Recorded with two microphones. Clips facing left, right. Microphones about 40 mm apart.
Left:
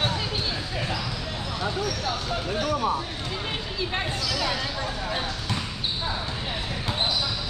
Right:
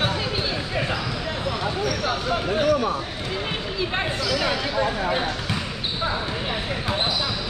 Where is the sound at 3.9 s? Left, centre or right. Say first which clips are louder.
Right 4 dB; centre.